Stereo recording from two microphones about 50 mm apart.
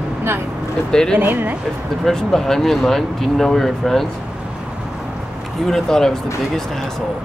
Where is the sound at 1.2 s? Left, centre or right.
Right.